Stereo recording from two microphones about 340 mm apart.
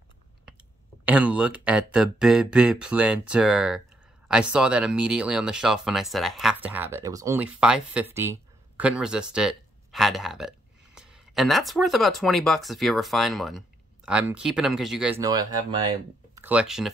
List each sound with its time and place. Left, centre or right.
1.0 s speech: centre